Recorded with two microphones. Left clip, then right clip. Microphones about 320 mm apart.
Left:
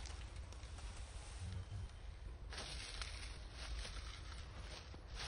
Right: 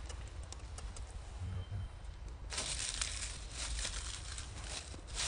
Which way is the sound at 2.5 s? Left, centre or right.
Right.